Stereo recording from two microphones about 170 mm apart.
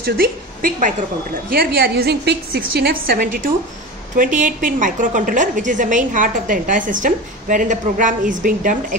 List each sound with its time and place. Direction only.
0.0 s a woman's voice: 60° right (ahead or behind)